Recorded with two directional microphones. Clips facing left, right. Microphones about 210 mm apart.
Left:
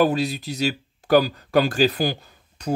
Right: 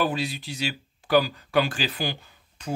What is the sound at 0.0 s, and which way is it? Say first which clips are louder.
Speech: left 7 dB; 40° left (ahead or behind).